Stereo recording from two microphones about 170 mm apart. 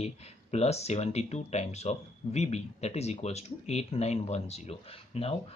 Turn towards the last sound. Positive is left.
turn(degrees=35)  # may be behind; listen again after turning